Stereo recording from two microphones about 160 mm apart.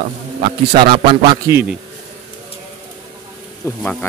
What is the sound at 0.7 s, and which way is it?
Speech, 30° right (ahead or behind).